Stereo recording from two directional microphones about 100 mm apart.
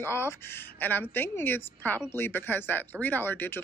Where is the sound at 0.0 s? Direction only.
25° left (ahead or behind).